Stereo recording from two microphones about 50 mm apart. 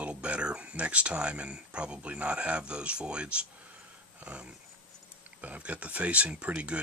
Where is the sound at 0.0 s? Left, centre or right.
Right.